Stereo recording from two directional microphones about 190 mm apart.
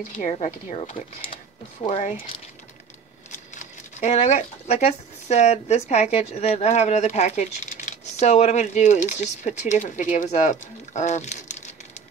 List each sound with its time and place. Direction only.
0.1 s speech: 40° left (ahead or behind)
3.3 s speech: 40° left (ahead or behind)